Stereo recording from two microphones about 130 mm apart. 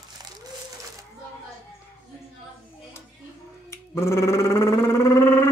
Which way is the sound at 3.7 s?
20° left (ahead or behind).